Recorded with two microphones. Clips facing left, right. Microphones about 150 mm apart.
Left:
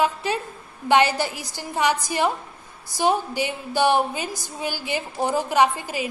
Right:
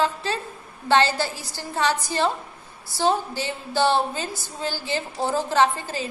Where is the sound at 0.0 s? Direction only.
15° left (ahead or behind).